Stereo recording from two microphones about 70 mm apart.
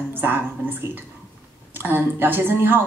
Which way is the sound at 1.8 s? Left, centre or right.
Right.